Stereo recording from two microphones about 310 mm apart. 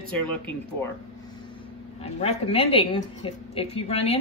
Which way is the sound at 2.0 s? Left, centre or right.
Centre.